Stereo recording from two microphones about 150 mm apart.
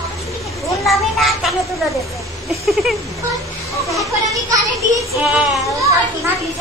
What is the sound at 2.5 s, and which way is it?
Speech, centre (ahead or behind).